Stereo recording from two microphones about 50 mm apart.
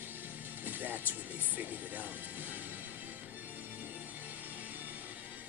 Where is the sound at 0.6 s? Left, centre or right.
Right.